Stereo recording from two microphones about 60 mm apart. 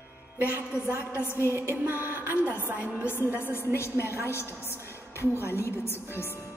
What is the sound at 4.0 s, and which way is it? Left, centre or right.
Speech, right.